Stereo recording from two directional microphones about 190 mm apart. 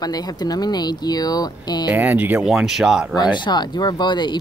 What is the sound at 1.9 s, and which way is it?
Speech, 10° right (ahead or behind).